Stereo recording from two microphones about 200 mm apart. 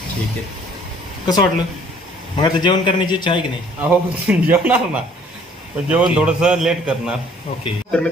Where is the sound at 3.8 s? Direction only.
10° right (ahead or behind).